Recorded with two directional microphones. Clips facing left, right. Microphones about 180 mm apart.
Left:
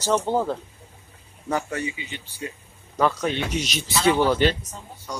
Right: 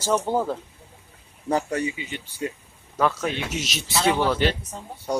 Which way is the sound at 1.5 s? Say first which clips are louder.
Right 3 dB; 40° right (ahead or behind).